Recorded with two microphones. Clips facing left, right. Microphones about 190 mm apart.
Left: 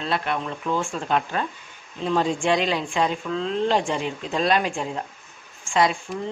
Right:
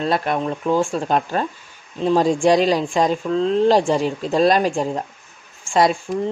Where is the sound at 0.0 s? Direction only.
40° right (ahead or behind).